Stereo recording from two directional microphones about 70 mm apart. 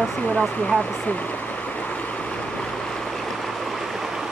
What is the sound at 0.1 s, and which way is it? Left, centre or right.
Stream, left.